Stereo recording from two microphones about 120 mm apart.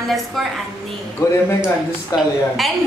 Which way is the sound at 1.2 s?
25° left (ahead or behind).